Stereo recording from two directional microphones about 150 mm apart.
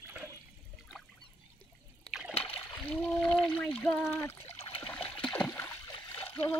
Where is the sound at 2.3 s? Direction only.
40° left (ahead or behind).